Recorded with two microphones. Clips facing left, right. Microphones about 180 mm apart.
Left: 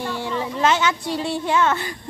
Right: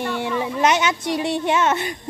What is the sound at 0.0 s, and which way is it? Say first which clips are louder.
Speech: right 2 dB; 20° right (ahead or behind).